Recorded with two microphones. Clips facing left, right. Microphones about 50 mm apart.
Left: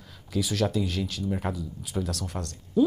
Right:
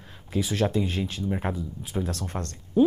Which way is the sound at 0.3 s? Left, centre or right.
Right.